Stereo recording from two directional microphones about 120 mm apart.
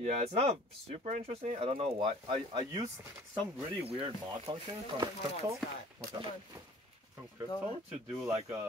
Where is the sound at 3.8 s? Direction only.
55° right (ahead or behind).